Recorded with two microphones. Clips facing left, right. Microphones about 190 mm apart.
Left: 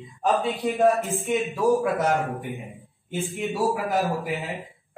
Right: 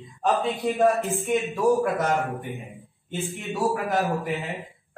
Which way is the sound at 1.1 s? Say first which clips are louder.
Right 1 dB; centre (ahead or behind).